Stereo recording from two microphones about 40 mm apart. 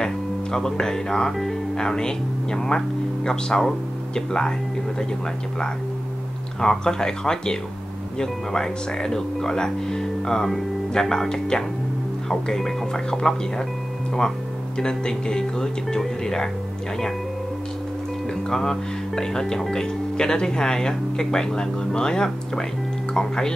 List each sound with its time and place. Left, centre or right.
0.0 s speech: centre
6.6 s speech: centre
14.8 s speech: centre
18.5 s speech: centre